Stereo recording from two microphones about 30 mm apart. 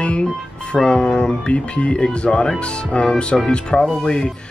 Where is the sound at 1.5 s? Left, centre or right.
Left.